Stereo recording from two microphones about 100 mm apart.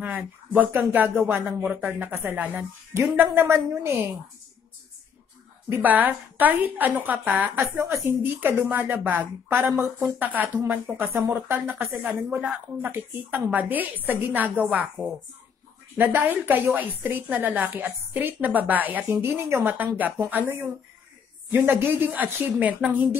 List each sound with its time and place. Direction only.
0.6 s a woman's voice: 20° right (ahead or behind)
5.8 s a woman's voice: 15° right (ahead or behind)
7.8 s a woman's voice: 30° right (ahead or behind)